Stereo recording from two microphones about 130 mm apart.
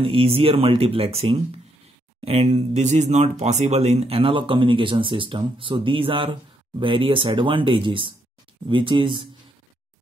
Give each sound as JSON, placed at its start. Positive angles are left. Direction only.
{"t": 0.0, "sound": "speech", "side_deg": -45}